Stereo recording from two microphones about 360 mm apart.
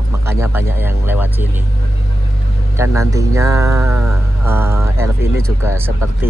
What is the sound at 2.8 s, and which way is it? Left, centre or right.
Speech, centre.